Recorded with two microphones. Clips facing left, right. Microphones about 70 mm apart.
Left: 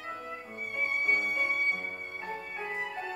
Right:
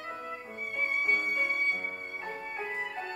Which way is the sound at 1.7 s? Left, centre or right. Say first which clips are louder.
Right 1 dB; centre.